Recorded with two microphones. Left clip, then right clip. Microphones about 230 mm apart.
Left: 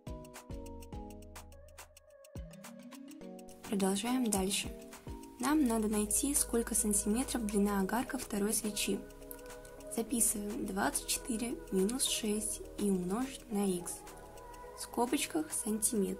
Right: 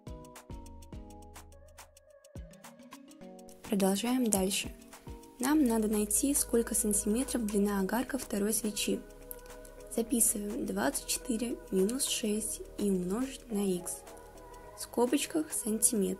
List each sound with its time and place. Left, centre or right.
3.7 s a woman's voice: centre
9.9 s a woman's voice: centre
15.8 s speech: right